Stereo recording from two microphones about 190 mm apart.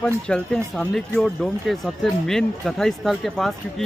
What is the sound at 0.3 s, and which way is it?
Speech, centre (ahead or behind).